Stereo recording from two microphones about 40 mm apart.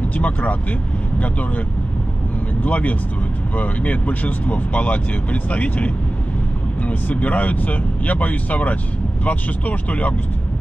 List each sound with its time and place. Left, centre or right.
0.1 s speech: left
2.6 s speech: left